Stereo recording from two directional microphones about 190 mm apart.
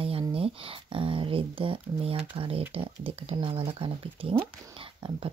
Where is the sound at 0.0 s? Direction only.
30° right (ahead or behind).